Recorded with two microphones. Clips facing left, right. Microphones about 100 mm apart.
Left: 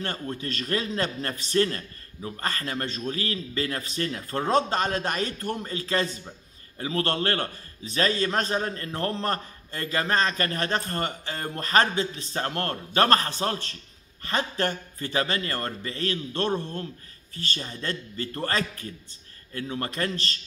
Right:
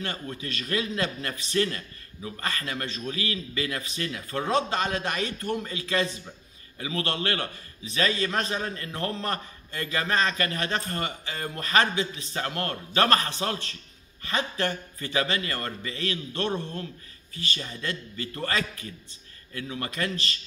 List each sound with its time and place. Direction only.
0.3 s a man's voice: 35° left (ahead or behind)
17.8 s a man's voice: 35° left (ahead or behind)